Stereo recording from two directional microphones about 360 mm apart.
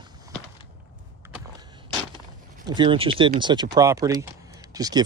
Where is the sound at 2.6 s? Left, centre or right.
Centre.